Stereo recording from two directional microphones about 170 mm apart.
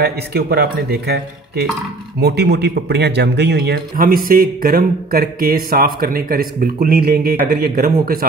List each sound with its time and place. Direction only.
0.0 s speech: 65° right (ahead or behind)
3.9 s speech: 55° right (ahead or behind)